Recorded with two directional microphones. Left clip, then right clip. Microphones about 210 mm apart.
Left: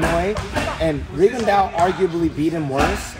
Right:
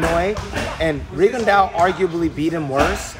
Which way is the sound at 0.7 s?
Centre (ahead or behind).